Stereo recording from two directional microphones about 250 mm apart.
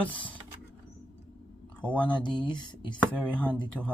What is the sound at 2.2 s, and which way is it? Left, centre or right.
Speech, centre.